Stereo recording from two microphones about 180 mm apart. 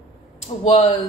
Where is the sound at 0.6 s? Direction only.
30° left (ahead or behind).